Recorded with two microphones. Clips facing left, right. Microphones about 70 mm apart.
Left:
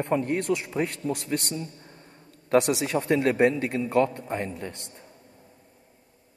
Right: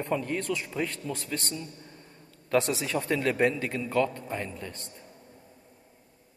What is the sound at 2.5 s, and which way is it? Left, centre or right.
Speech, left.